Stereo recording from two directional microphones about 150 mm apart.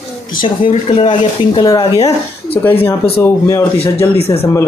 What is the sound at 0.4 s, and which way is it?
A child's voice, 35° left (ahead or behind).